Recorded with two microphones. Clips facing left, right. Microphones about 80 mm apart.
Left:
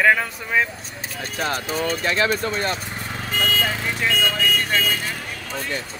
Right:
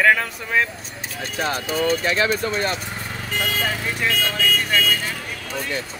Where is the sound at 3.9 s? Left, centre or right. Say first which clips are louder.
Left 1 dB; centre.